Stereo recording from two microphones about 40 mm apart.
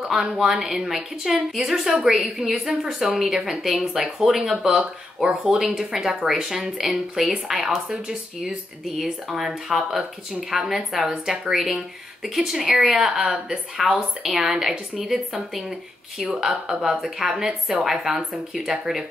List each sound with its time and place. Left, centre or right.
0.1 s speech: centre
4.6 s speech: right
5.8 s speech: centre
12.4 s speech: centre